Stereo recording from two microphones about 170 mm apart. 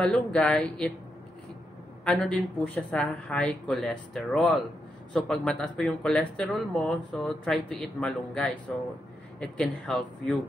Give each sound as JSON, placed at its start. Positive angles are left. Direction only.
{"t": 0.0, "sound": "speech", "side_deg": 5}
{"t": 2.0, "sound": "speech", "side_deg": 5}